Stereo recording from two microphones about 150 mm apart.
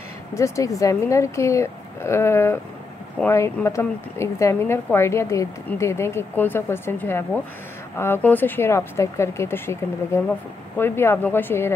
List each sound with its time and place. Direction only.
0.3 s speech: 20° left (ahead or behind)